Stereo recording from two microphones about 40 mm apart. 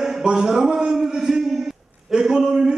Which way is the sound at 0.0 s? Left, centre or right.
Centre.